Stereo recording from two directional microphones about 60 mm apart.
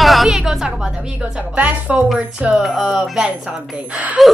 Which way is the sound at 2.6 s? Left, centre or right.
Centre.